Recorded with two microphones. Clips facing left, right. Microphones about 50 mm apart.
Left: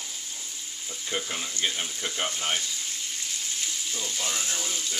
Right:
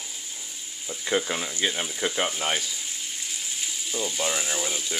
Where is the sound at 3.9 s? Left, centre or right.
Centre.